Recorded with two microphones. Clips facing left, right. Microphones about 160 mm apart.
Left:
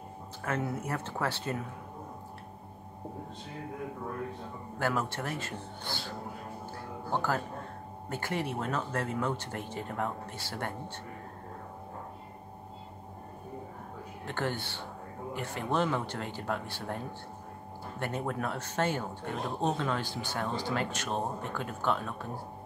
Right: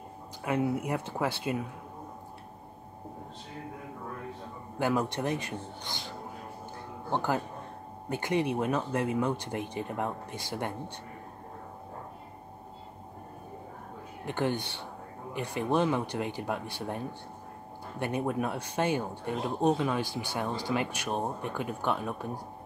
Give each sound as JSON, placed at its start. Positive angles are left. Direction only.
{"t": 0.4, "sound": "speech", "side_deg": -15}
{"t": 4.7, "sound": "speech", "side_deg": -15}
{"t": 14.2, "sound": "speech", "side_deg": -15}